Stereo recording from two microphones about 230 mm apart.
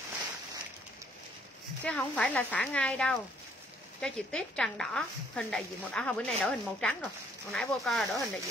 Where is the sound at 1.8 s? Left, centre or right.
Centre.